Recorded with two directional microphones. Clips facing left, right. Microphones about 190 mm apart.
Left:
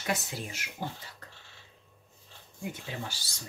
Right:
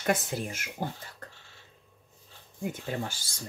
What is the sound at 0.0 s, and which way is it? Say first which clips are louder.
Speech: right 5 dB; 50° right (ahead or behind).